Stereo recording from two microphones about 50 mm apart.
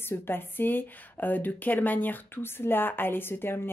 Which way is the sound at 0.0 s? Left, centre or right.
Left.